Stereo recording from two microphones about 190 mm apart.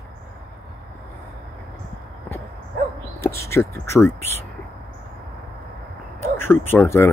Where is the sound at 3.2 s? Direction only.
15° left (ahead or behind).